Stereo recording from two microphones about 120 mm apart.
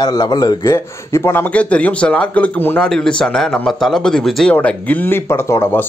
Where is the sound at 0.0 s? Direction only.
35° left (ahead or behind).